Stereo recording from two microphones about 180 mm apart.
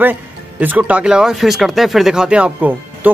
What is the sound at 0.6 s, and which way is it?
Speech, 10° right (ahead or behind).